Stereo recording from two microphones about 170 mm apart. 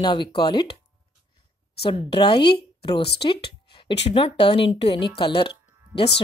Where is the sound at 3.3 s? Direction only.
30° left (ahead or behind).